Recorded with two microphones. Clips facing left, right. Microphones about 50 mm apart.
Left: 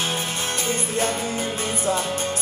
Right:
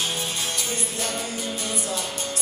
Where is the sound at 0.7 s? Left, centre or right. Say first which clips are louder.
Left 6 dB; left.